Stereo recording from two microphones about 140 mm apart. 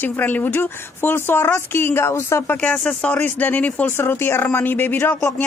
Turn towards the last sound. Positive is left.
turn(degrees=15)  # may be behind; listen again after turning